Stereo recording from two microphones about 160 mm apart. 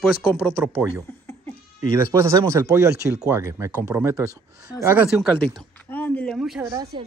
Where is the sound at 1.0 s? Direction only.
15° left (ahead or behind).